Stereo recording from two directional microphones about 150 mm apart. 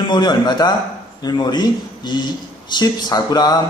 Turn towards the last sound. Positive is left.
turn(degrees=25)  # may be behind; listen again after turning